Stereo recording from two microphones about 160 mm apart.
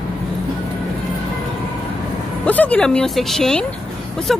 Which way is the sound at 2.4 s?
10° left (ahead or behind).